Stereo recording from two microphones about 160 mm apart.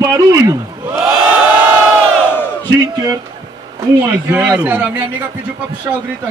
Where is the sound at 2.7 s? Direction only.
20° right (ahead or behind).